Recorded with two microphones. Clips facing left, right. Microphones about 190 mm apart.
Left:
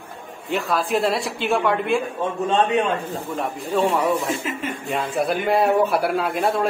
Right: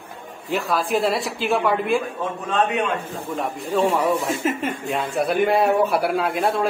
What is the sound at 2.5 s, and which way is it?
Speech, 30° left (ahead or behind).